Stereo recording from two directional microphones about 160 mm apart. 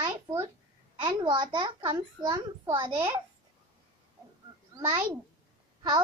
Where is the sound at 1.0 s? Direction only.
30° right (ahead or behind).